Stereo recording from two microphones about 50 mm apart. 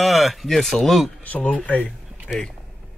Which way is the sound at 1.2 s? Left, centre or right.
Left.